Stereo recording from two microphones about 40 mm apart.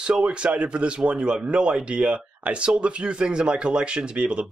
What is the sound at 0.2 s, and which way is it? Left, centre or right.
Speech, right.